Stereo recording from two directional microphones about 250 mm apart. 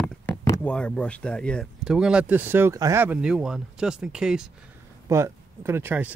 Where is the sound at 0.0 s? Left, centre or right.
Centre.